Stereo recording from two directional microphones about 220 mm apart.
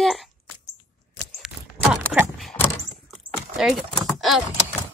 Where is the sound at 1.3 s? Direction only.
5° right (ahead or behind).